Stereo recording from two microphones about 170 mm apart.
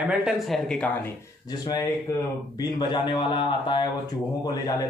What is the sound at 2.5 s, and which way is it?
A man's voice, 25° left (ahead or behind).